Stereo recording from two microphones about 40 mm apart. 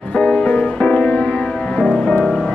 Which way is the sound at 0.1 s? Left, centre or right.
Left.